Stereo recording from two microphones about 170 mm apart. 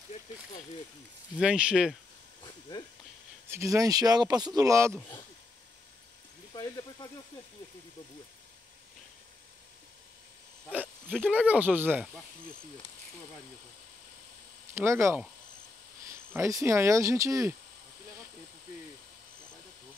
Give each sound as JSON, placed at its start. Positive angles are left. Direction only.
{"t": 1.4, "sound": "speech", "side_deg": -5}
{"t": 3.4, "sound": "speech", "side_deg": -15}
{"t": 6.5, "sound": "speech", "side_deg": 25}
{"t": 11.1, "sound": "speech", "side_deg": -5}
{"t": 14.7, "sound": "speech", "side_deg": -15}